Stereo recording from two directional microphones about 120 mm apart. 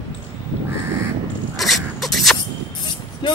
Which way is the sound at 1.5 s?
Centre (ahead or behind).